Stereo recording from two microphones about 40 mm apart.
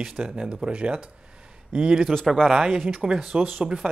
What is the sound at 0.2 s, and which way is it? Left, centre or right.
Speech, right.